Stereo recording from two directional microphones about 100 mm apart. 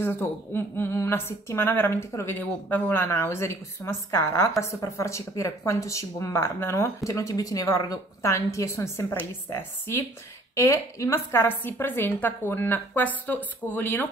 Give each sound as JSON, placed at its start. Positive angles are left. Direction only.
{"t": 0.0, "sound": "a woman's voice", "side_deg": 20}